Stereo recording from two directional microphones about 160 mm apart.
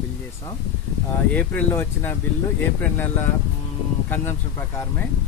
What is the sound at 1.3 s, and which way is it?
Speech, 10° left (ahead or behind).